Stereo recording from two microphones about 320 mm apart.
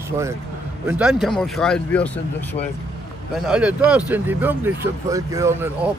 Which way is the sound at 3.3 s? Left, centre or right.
Centre.